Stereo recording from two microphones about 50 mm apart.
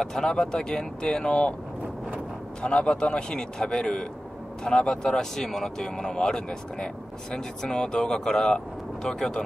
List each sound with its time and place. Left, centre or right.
0.0 s speech: centre
2.6 s speech: centre